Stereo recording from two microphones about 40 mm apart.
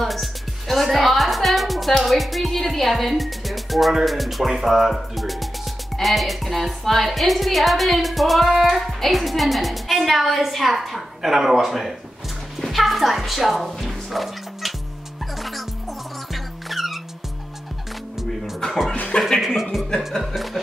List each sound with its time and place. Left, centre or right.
0.0 s a woman's voice: centre
12.6 s music: centre
16.6 s music: centre
19.1 s speech: centre
19.4 s a woman's voice: centre